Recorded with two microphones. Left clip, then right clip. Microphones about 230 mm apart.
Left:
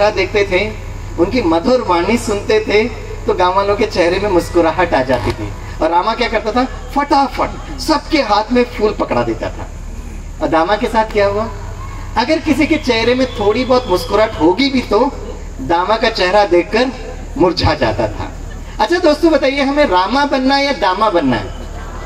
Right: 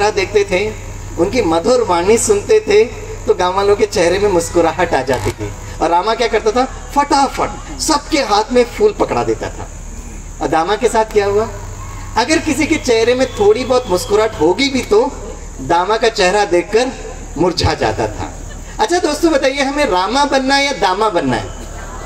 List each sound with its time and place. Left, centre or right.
0.0 s speech: right